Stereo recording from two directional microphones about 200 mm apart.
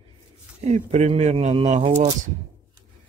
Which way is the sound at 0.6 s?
35° right (ahead or behind).